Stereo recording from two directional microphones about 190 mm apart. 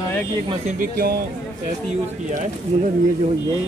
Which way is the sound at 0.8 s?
50° right (ahead or behind).